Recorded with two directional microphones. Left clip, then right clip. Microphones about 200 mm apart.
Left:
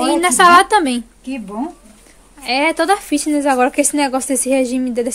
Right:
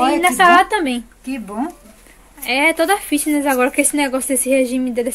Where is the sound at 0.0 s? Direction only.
20° left (ahead or behind).